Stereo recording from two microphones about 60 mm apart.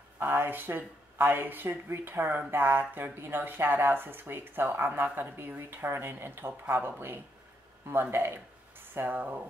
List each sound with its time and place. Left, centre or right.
0.2 s speech: right
7.9 s speech: right